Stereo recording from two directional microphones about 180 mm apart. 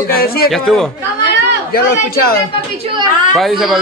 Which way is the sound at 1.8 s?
55° left (ahead or behind).